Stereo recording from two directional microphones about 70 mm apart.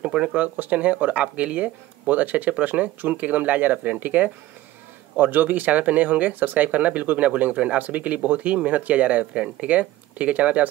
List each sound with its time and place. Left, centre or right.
0.0 s speech: centre